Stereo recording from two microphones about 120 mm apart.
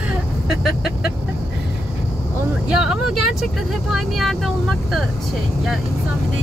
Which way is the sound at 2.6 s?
5° right (ahead or behind).